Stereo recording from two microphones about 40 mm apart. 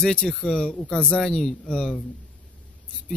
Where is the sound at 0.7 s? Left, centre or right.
Left.